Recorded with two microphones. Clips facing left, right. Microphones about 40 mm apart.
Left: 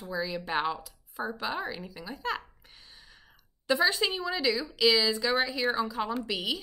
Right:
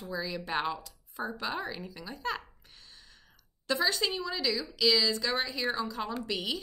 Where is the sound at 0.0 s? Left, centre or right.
Centre.